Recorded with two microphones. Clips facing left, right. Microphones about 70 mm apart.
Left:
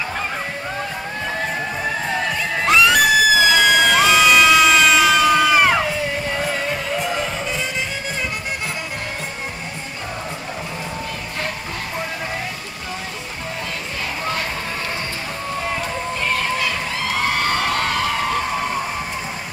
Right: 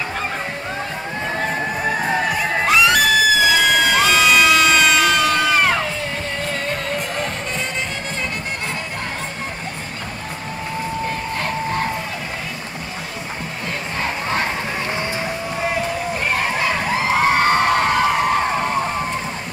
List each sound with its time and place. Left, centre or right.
1.8 s crowd: centre
2.6 s music: centre
16.3 s a sound: right